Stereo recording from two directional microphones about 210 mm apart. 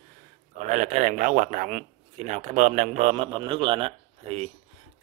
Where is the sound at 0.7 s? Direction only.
35° right (ahead or behind).